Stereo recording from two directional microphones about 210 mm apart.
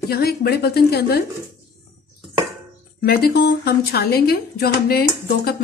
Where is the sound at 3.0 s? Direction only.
45° left (ahead or behind).